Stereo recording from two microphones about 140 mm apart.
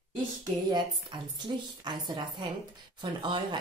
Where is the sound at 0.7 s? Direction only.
30° right (ahead or behind).